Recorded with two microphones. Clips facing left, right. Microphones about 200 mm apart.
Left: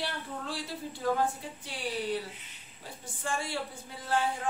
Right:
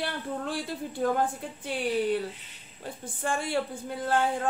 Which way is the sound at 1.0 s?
60° right (ahead or behind).